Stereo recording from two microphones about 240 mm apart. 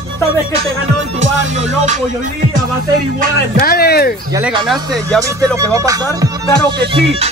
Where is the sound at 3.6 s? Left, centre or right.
Left.